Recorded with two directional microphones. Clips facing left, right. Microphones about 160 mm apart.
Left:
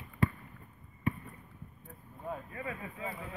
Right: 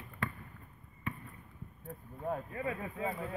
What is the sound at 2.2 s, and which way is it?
Speech, 35° right (ahead or behind).